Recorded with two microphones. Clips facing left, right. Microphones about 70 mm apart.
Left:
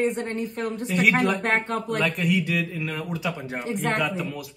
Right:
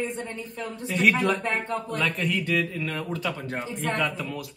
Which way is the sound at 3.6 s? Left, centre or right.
Left.